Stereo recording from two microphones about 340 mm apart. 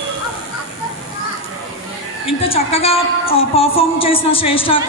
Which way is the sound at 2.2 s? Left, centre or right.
Centre.